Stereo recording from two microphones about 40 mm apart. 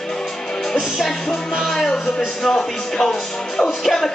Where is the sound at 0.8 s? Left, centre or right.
Centre.